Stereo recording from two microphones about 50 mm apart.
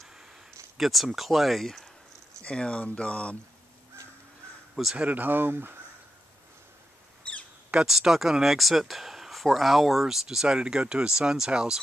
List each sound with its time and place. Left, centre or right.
0.7 s speech: centre
2.4 s speech: left
4.9 s speech: right
7.8 s speech: centre